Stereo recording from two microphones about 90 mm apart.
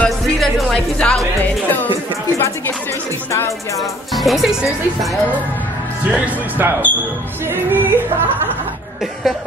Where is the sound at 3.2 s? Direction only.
35° left (ahead or behind).